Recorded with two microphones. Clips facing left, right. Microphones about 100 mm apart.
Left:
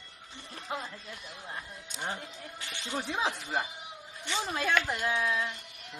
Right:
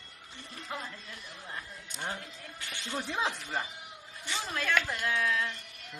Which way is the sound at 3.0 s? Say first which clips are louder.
Left 1 dB; 5° left (ahead or behind).